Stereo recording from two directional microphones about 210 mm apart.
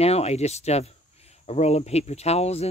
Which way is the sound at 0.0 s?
30° left (ahead or behind).